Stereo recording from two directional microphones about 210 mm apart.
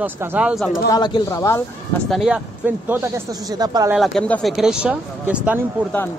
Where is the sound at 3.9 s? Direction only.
Centre (ahead or behind).